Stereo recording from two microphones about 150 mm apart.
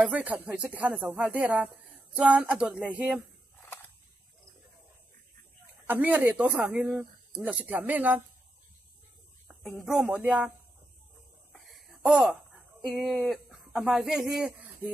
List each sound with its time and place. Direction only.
0.0 s speech: 10° right (ahead or behind)
5.9 s speech: 10° right (ahead or behind)
9.5 s speech: centre (ahead or behind)
11.5 s a sound: centre (ahead or behind)
12.8 s speech: centre (ahead or behind)